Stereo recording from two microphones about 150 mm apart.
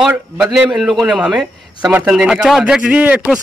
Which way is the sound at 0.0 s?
5° right (ahead or behind).